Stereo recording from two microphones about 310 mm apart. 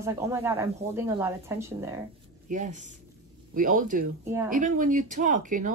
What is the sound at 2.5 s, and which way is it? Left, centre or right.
Speech, right.